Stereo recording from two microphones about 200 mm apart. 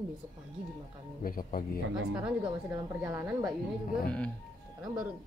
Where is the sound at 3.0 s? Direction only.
15° right (ahead or behind).